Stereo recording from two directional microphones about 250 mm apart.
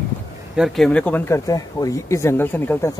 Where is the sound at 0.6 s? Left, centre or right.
Centre.